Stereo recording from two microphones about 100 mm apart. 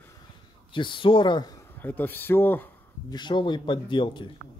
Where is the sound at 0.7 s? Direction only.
55° left (ahead or behind).